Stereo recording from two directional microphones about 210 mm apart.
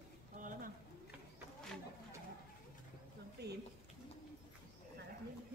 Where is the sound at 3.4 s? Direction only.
50° right (ahead or behind).